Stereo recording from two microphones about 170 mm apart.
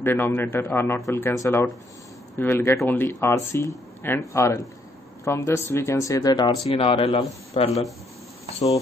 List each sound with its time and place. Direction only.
0.0 s speech: 15° left (ahead or behind); by 7.7 s 35° left (ahead or behind)